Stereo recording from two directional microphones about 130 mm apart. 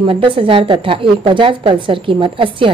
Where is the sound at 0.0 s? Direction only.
40° right (ahead or behind).